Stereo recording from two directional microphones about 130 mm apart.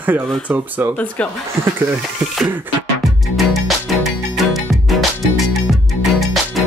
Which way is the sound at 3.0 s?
Centre (ahead or behind).